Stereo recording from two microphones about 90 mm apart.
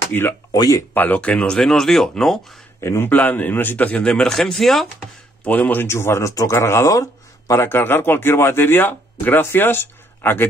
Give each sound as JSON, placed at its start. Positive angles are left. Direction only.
{"t": 0.1, "sound": "speech", "side_deg": 20}
{"t": 0.5, "sound": "speech", "side_deg": 45}
{"t": 0.9, "sound": "speech", "side_deg": 20}
{"t": 2.8, "sound": "speech", "side_deg": 30}
{"t": 3.1, "sound": "a man's voice", "side_deg": 20}
{"t": 5.4, "sound": "speech", "side_deg": 20}
{"t": 5.9, "sound": "speech", "side_deg": 30}
{"t": 7.6, "sound": "speech", "side_deg": 25}